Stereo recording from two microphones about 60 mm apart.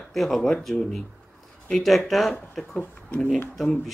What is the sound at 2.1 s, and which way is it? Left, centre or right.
Speech, centre.